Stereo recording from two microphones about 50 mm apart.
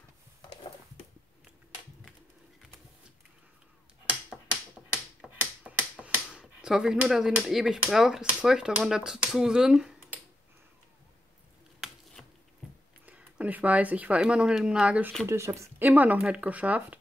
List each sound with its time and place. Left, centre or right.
4.3 s typewriter: centre
5.7 s finger snapping: right
6.6 s speech: centre
12.2 s squish: centre
13.0 s a sound: right
14.2 s speech: centre
15.2 s speech: right
15.8 s speech: right